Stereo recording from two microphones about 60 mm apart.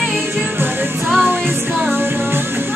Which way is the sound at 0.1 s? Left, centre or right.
Right.